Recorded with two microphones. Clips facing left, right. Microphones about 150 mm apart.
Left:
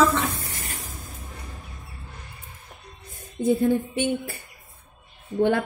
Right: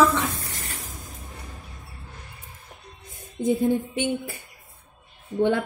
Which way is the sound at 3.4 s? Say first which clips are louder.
Left 1 dB; 15° right (ahead or behind).